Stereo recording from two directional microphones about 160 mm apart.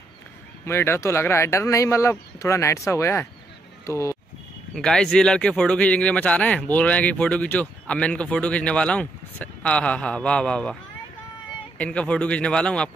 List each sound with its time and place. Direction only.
0.7 s speech: 15° left (ahead or behind)
4.7 s speech: 5° left (ahead or behind)
11.8 s speech: 10° left (ahead or behind)